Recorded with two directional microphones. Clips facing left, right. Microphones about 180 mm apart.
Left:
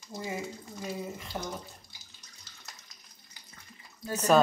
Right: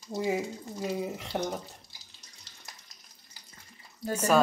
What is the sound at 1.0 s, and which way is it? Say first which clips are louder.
Speech: right 5 dB; 70° right (ahead or behind).